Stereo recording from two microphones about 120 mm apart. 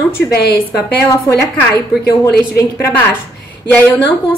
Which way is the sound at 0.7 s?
25° left (ahead or behind).